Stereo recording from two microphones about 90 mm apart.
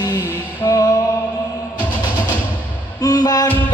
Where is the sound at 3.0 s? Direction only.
45° left (ahead or behind).